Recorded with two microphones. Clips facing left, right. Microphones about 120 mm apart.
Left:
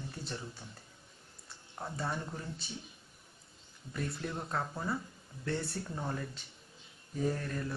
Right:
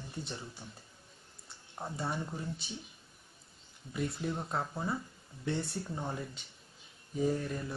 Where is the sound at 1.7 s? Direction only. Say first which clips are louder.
Right 1 dB; 15° right (ahead or behind).